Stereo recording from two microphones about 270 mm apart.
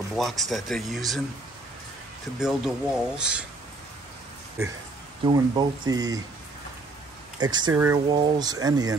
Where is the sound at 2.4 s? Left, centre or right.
Centre.